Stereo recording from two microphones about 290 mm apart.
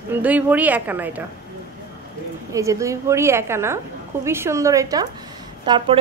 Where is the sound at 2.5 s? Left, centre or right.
Centre.